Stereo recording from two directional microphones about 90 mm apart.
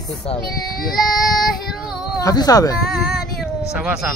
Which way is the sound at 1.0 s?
Centre (ahead or behind).